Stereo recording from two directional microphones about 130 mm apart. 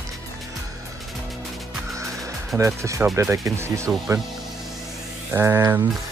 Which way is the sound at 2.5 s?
20° right (ahead or behind).